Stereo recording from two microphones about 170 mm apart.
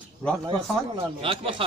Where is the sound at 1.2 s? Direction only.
30° right (ahead or behind).